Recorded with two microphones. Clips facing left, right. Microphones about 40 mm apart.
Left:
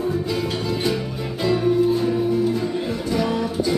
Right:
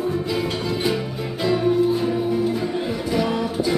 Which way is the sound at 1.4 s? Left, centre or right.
Centre.